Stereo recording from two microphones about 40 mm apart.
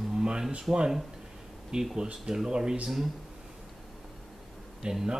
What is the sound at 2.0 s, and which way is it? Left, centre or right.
Speech, centre.